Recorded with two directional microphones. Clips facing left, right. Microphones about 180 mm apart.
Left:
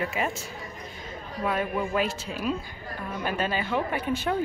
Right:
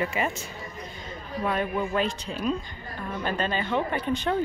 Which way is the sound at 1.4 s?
5° left (ahead or behind).